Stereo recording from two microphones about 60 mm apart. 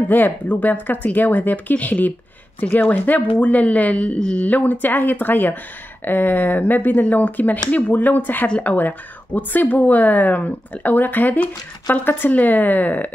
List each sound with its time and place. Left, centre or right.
0.1 s speech: left